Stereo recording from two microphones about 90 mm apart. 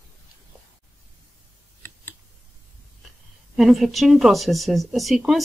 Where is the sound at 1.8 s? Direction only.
30° left (ahead or behind).